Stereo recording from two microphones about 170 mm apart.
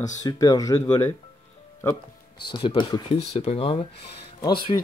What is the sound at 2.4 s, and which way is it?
Speech, 25° left (ahead or behind).